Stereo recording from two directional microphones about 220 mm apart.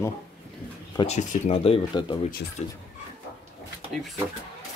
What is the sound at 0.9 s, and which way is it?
Speech, 30° left (ahead or behind).